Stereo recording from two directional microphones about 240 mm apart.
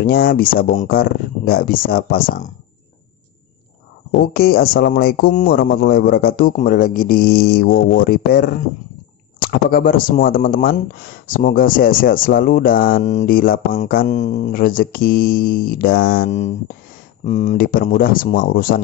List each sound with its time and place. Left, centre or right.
0.0 s speech: left
4.2 s speech: left